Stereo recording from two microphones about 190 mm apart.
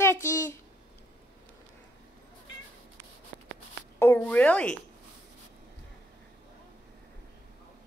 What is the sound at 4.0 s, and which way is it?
Speech, 10° left (ahead or behind).